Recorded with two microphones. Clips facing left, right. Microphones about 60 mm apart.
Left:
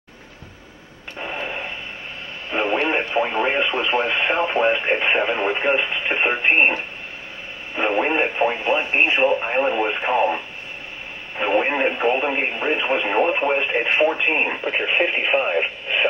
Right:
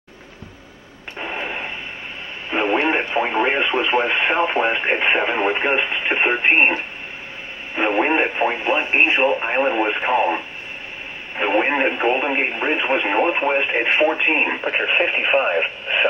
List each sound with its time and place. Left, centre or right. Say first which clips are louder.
1.1 s radio: right 1 dB; right
2.5 s speech: right 2 dB; right
15.0 s speech: right 1 dB; right
15.3 s speech: right 2 dB; right